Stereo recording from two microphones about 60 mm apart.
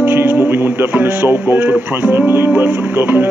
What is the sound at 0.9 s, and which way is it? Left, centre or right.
Speech, right.